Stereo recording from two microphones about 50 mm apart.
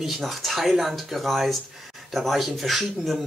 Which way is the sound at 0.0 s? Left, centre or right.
Centre.